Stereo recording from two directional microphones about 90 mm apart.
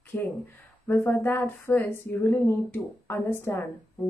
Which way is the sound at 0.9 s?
20° left (ahead or behind).